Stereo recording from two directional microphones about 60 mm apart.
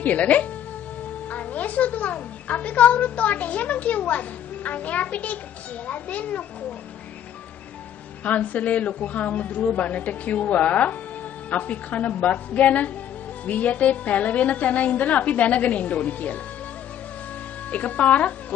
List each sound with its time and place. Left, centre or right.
0.0 s a woman's voice: left
8.2 s a woman's voice: left
17.6 s a woman's voice: left